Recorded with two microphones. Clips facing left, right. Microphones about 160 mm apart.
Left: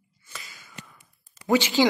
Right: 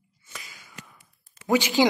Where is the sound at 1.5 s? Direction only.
15° right (ahead or behind).